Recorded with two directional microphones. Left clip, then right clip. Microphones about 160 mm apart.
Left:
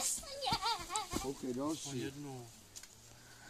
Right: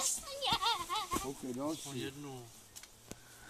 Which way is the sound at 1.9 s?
15° left (ahead or behind).